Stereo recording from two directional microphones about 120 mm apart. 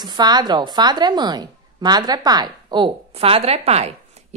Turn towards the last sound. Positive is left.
turn(degrees=-60)  # may be behind; listen again after turning